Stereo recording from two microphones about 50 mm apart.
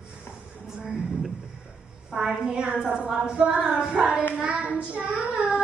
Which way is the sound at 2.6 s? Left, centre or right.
Centre.